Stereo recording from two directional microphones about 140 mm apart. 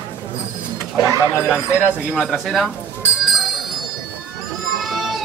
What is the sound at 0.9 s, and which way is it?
Speech, 25° right (ahead or behind).